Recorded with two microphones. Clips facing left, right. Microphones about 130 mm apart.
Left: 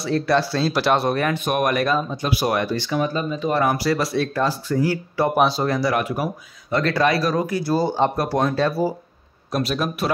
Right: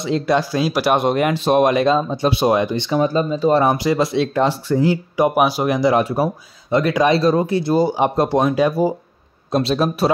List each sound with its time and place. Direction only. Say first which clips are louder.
0.0 s speech: right 2 dB; 15° right (ahead or behind)
5.9 s speech: right 5 dB; 30° right (ahead or behind)
6.8 s speech: right 4 dB; 15° right (ahead or behind)
7.8 s speech: right 3 dB; 10° right (ahead or behind)
9.5 s speech: right 5 dB; 30° right (ahead or behind)